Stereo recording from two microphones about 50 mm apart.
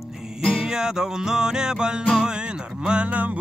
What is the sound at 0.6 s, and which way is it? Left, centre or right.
Music, centre.